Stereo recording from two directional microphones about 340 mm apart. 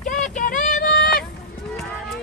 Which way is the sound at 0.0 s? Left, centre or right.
Left.